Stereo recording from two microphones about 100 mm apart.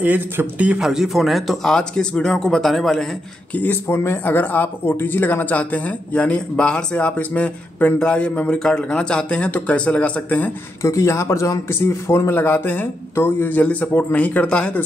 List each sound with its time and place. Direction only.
0.0 s speech: 15° right (ahead or behind); by 3.1 s 5° left (ahead or behind)
3.5 s speech: 20° left (ahead or behind)
10.8 s a man's voice: 30° left (ahead or behind); by 14.8 s 10° left (ahead or behind)